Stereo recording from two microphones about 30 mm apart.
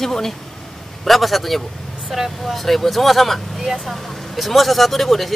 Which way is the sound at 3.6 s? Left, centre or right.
Centre.